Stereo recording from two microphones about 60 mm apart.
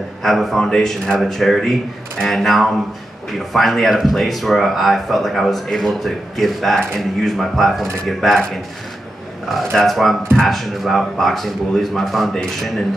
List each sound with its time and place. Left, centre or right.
0.2 s a man's voice: centre
9.5 s speech: centre